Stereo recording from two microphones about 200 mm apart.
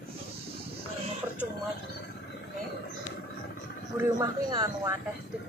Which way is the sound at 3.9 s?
20° right (ahead or behind).